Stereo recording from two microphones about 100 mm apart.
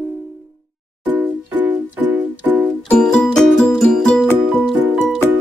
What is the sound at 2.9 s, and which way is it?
Music, 10° left (ahead or behind).